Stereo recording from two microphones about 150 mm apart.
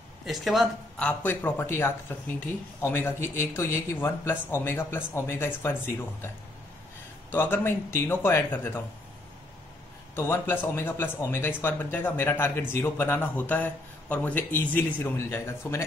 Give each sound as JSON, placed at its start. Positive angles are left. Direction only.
{"t": 0.2, "sound": "speech", "side_deg": 0}
{"t": 7.2, "sound": "speech", "side_deg": 15}
{"t": 10.1, "sound": "speech", "side_deg": 15}